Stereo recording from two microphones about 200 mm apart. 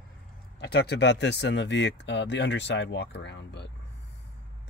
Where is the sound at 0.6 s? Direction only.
55° left (ahead or behind).